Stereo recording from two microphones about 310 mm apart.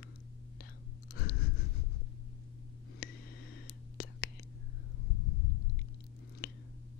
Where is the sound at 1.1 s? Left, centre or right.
Left.